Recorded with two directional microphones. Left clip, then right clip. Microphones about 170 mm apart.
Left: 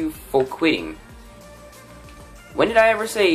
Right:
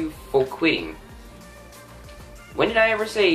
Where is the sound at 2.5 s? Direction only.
35° left (ahead or behind).